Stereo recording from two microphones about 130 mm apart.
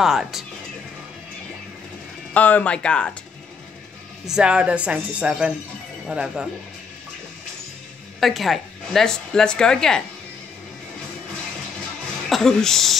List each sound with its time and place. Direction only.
0.0 s a woman's voice: 5° right (ahead or behind)
2.3 s speech: 10° left (ahead or behind)
4.3 s speech: 5° right (ahead or behind)
8.2 s a woman's voice: centre (ahead or behind)
12.3 s a woman's voice: 5° left (ahead or behind)